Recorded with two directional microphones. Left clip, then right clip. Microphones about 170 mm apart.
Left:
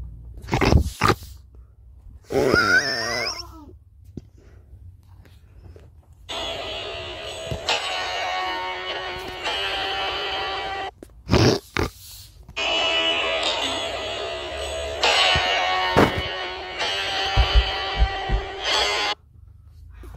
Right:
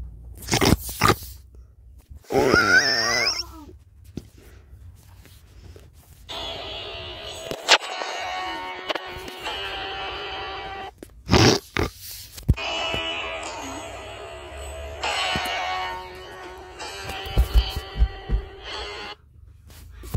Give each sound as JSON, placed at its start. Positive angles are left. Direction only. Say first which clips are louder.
{"t": 0.5, "sound": "crunch", "louder": "right 1 dB", "side_deg": 0}
{"t": 1.1, "sound": "a sound", "louder": "right 1 dB", "side_deg": -20}
{"t": 2.3, "sound": "wail", "louder": "right 1 dB", "side_deg": -10}
{"t": 4.2, "sound": "a sound", "louder": "right 2 dB", "side_deg": -20}
{"t": 6.2, "sound": "a sound", "louder": "left 3 dB", "side_deg": 25}
{"t": 7.8, "sound": "music", "louder": "left 4 dB", "side_deg": 25}
{"t": 9.4, "sound": "music", "louder": "left 5 dB", "side_deg": 20}
{"t": 11.0, "sound": "grunt", "louder": "right 3 dB", "side_deg": -5}
{"t": 11.9, "sound": "oink", "louder": "right 3 dB", "side_deg": -15}
{"t": 12.5, "sound": "music", "louder": "left 6 dB", "side_deg": 15}
{"t": 17.2, "sound": "a sound", "louder": "left 10 dB", "side_deg": 45}
{"t": 17.7, "sound": "music", "louder": "left 11 dB", "side_deg": 45}